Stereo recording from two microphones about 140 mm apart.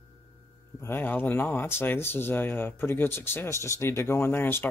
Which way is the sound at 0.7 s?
15° left (ahead or behind).